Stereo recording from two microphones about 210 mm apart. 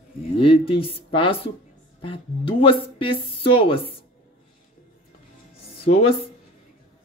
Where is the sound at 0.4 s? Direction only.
25° left (ahead or behind).